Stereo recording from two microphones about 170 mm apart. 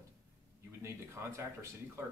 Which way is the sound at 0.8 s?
15° right (ahead or behind).